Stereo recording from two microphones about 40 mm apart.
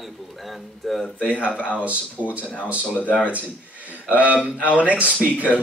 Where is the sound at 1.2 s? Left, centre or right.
Right.